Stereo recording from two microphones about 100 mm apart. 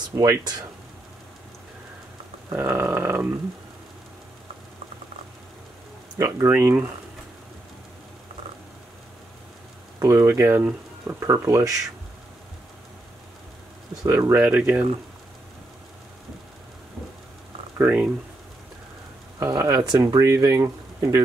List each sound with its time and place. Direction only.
0.1 s speech: 40° right (ahead or behind)
2.5 s speech: 20° right (ahead or behind)
6.1 s speech: 30° right (ahead or behind)
9.9 s speech: 30° right (ahead or behind)
14.0 s speech: 25° right (ahead or behind)
14.3 s speech: 15° right (ahead or behind)
17.7 s speech: 15° right (ahead or behind)
19.4 s speech: 35° right (ahead or behind)